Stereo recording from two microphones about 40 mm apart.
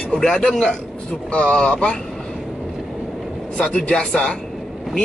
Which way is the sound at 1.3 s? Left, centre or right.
Left.